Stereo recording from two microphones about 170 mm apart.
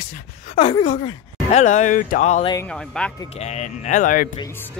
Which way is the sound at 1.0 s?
45° left (ahead or behind).